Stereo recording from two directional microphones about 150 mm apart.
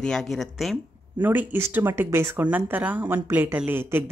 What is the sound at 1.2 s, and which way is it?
Speech, 10° right (ahead or behind).